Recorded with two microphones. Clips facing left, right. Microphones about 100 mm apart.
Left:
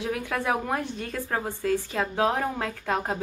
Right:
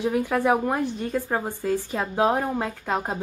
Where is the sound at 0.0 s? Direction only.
15° right (ahead or behind).